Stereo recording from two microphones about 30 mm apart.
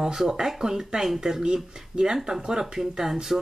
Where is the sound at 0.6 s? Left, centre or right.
Centre.